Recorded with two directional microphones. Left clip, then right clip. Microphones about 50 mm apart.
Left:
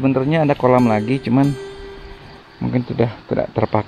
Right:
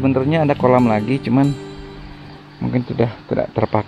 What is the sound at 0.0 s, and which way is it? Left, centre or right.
Speech, right.